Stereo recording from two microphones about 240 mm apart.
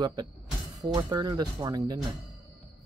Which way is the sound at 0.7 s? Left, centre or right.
Centre.